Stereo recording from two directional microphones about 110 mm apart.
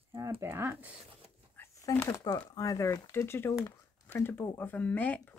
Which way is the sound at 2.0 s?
25° left (ahead or behind).